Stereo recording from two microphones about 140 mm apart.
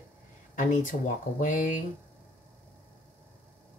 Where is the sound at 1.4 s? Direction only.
70° left (ahead or behind).